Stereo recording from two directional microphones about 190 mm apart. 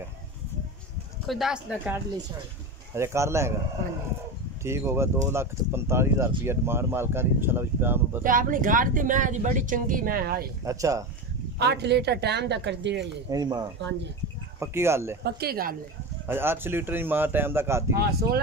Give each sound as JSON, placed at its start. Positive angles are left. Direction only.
{"t": 1.2, "sound": "speech", "side_deg": 0}
{"t": 2.9, "sound": "speech", "side_deg": -15}
{"t": 4.6, "sound": "speech", "side_deg": -15}
{"t": 8.2, "sound": "speech", "side_deg": -45}
{"t": 10.6, "sound": "speech", "side_deg": -15}
{"t": 11.5, "sound": "speech", "side_deg": -60}
{"t": 13.3, "sound": "speech", "side_deg": -20}
{"t": 15.2, "sound": "speech", "side_deg": -55}
{"t": 16.3, "sound": "speech", "side_deg": -10}
{"t": 17.9, "sound": "speech", "side_deg": -55}